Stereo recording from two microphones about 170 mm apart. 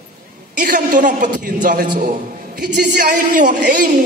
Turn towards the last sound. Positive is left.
turn(degrees=-55)  # may be behind; listen again after turning